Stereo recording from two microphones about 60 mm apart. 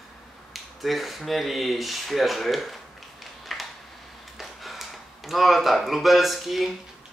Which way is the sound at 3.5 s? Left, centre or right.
Centre.